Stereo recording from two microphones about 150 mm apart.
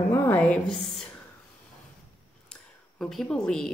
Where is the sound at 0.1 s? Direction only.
15° left (ahead or behind).